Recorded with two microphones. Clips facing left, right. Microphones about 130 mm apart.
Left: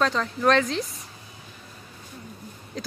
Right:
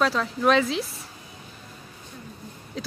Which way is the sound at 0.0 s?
5° right (ahead or behind).